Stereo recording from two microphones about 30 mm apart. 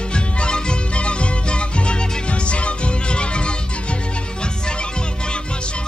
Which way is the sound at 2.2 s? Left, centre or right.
Left.